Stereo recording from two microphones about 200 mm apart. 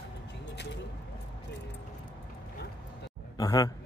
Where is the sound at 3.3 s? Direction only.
20° left (ahead or behind).